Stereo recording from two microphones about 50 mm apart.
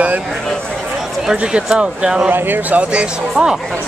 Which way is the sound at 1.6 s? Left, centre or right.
Centre.